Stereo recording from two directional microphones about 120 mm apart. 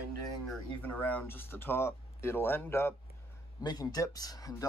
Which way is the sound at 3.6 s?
30° left (ahead or behind).